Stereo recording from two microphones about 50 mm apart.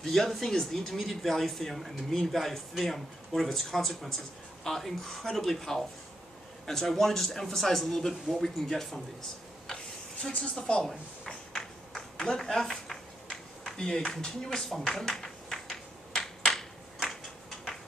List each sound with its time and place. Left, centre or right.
0.0 s a man's voice: centre
9.7 s insect: centre
10.4 s a sound: centre